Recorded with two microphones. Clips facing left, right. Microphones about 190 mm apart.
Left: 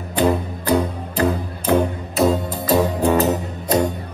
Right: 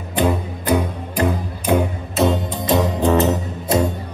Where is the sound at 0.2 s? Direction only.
15° right (ahead or behind).